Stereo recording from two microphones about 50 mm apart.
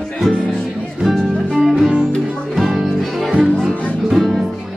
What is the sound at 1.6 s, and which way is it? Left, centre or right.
Music, centre.